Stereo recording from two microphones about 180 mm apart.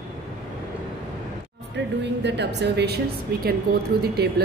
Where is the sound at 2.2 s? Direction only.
70° right (ahead or behind).